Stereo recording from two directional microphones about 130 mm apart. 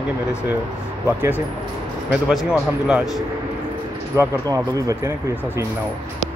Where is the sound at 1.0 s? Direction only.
20° right (ahead or behind).